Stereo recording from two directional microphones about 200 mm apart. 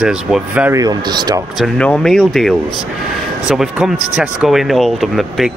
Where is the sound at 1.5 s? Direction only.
Centre (ahead or behind).